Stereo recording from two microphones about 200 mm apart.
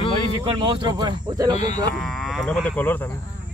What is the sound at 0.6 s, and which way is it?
Speech, 20° right (ahead or behind).